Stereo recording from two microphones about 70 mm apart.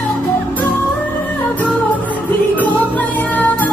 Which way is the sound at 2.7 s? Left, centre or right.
Left.